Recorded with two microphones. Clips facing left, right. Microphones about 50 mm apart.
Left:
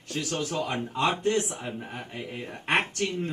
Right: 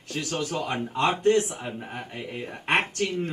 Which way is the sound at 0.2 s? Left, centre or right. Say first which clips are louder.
Right 1 dB; right.